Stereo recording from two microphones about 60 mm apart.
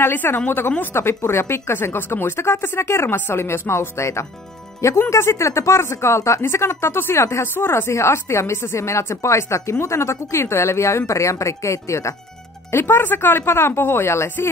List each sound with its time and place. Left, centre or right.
0.0 s speech: left
0.9 s speech: left
7.2 s a woman's voice: left
7.5 s speech: left
7.9 s a woman's voice: left
12.7 s speech: left